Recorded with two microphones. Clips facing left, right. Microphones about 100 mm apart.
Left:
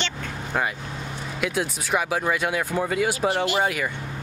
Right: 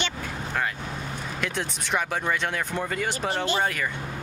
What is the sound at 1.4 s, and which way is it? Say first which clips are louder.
Speech: left 6 dB; 5° left (ahead or behind).